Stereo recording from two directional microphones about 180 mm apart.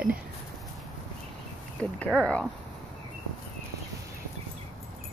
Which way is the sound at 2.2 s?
5° left (ahead or behind).